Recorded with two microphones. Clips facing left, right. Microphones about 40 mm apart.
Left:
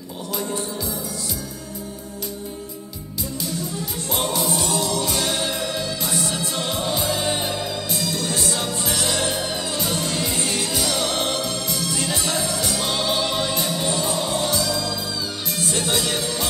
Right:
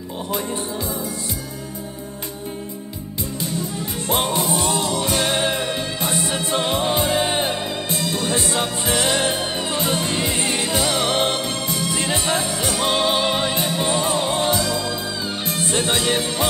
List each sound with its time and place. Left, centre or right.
4.1 s music: right